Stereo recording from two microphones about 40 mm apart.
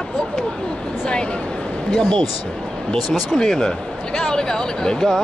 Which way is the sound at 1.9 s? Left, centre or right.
Centre.